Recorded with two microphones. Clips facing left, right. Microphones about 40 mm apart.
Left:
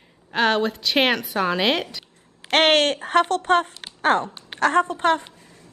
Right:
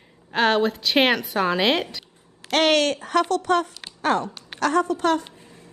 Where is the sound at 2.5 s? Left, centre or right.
Left.